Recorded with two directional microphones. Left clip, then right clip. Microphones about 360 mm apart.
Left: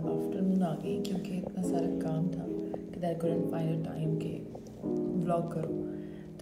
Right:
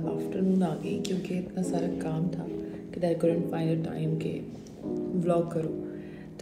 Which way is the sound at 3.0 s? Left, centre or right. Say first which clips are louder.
Right 6 dB; centre.